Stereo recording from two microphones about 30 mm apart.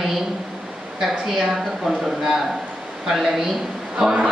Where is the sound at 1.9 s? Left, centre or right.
Centre.